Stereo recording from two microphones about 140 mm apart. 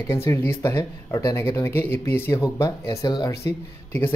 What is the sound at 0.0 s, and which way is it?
Speech, 20° left (ahead or behind).